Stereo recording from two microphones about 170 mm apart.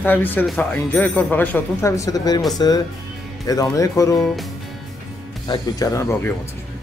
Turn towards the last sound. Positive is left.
turn(degrees=15)  # may be behind; listen again after turning